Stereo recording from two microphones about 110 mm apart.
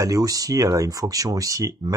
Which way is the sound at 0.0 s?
30° right (ahead or behind).